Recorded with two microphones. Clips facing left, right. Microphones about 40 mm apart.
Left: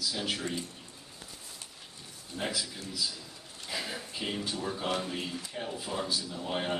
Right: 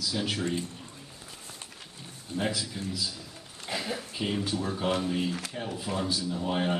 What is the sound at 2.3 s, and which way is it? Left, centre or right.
Speech, centre.